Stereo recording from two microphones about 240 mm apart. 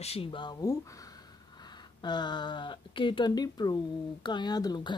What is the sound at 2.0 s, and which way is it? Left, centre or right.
Speech, centre.